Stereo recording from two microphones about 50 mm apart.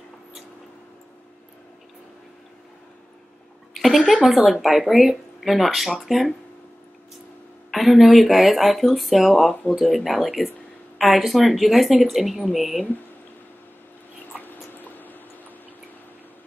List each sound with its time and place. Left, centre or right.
3.8 s speech: centre
7.7 s speech: centre
14.4 s a sound: left